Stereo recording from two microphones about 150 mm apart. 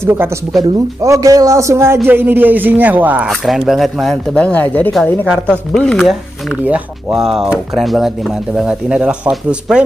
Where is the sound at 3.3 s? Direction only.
Centre (ahead or behind).